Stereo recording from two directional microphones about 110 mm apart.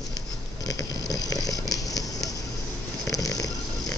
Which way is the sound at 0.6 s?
35° left (ahead or behind).